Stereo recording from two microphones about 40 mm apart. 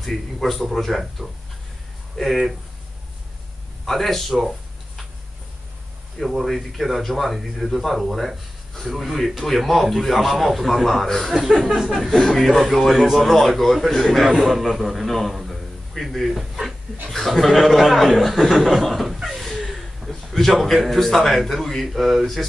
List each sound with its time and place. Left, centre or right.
0.1 s a man's voice: centre
3.8 s a man's voice: centre
4.3 s a sound: centre
6.2 s a man's voice: centre
11.3 s a man's voice: centre
14.2 s a man's voice: centre